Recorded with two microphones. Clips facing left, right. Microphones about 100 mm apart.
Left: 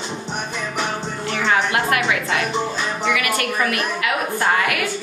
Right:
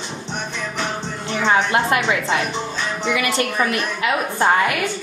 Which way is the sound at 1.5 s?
25° right (ahead or behind).